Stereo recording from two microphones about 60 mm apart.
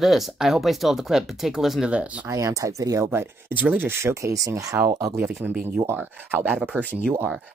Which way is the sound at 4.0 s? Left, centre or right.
Right.